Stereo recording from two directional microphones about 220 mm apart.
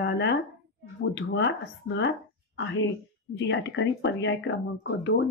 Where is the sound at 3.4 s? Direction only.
55° left (ahead or behind).